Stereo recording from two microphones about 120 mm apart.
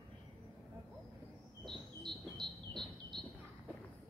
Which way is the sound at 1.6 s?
40° right (ahead or behind).